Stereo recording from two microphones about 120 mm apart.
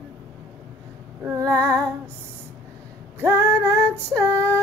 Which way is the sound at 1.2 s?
25° right (ahead or behind).